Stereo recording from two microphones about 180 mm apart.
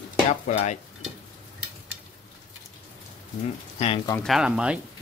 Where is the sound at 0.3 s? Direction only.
40° left (ahead or behind).